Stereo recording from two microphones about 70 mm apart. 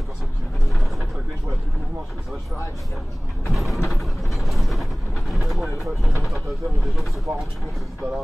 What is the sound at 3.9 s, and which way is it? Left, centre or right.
Vehicle, centre.